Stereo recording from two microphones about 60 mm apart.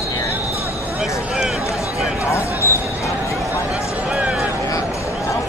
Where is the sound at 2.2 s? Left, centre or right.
Left.